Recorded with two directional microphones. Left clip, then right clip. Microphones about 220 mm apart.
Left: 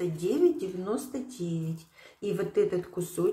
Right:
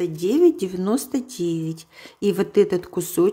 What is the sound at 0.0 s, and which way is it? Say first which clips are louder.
Speech: right 8 dB; 40° right (ahead or behind).